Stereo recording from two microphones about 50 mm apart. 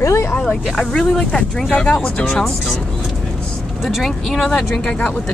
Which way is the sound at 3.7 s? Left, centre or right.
Centre.